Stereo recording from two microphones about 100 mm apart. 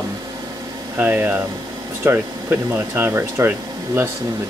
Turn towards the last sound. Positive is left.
turn(degrees=-20)  # may be behind; listen again after turning